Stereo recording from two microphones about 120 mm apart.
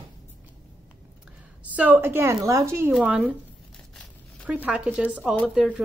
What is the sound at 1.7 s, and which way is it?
A woman's voice, 15° right (ahead or behind).